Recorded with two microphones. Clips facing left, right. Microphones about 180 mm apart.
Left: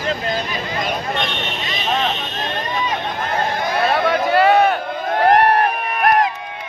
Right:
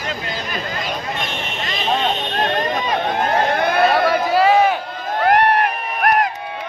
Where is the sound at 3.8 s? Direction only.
Centre (ahead or behind).